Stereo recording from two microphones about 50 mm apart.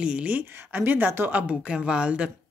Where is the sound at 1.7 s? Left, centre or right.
Centre.